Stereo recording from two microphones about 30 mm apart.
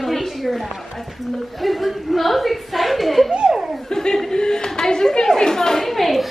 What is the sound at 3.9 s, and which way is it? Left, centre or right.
Speech, left.